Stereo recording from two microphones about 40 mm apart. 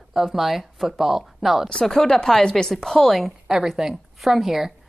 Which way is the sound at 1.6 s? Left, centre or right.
Centre.